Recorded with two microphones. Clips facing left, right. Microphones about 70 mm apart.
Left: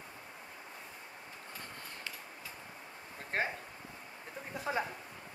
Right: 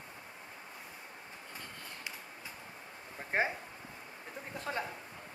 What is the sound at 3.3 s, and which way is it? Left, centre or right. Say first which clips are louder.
Speech: right 3 dB; centre.